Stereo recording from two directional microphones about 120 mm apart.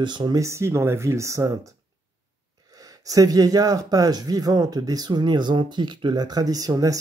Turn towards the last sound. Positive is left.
turn(degrees=-30)  # may be behind; listen again after turning